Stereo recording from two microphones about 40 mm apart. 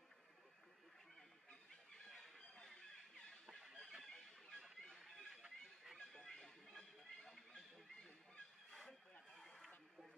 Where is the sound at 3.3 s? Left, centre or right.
Centre.